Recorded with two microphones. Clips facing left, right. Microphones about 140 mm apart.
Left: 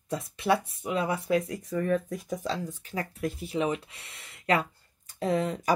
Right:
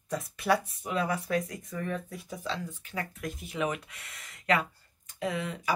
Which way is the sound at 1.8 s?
40° left (ahead or behind).